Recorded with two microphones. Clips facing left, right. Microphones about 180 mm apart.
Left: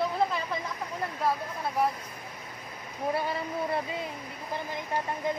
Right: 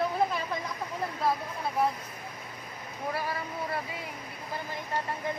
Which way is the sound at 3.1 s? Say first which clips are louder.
Left 4 dB; 25° left (ahead or behind).